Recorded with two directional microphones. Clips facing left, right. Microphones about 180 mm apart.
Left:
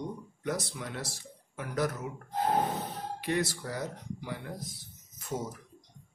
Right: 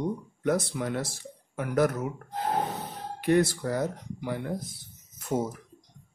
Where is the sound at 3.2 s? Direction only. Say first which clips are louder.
Right 9 dB; 50° right (ahead or behind).